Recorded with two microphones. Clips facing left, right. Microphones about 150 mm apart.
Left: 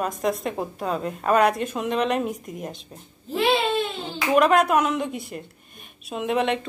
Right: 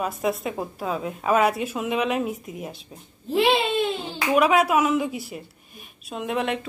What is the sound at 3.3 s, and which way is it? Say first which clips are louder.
Baby cry: right 2 dB; 15° right (ahead or behind).